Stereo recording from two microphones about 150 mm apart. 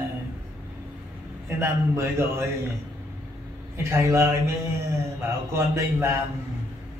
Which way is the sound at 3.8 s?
15° right (ahead or behind).